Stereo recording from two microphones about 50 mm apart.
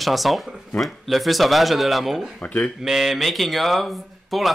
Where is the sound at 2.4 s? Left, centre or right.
Left.